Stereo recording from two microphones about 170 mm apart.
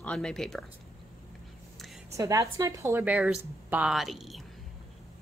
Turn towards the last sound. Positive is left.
turn(degrees=0)  # may be behind; listen again after turning